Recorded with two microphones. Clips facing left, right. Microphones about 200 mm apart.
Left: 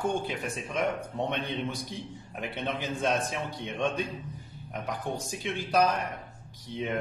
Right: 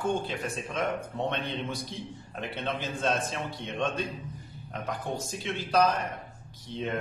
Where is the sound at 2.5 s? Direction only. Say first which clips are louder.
Left 1 dB; 15° left (ahead or behind).